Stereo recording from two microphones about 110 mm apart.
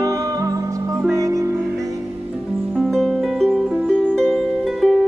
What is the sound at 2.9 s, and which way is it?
Music, 5° left (ahead or behind).